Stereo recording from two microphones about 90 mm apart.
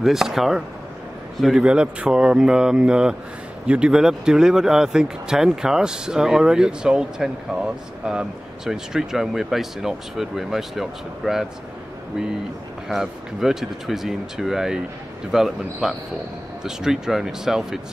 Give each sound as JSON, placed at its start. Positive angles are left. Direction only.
{"t": 0.0, "sound": "speech", "side_deg": -5}
{"t": 12.8, "sound": "speech", "side_deg": -5}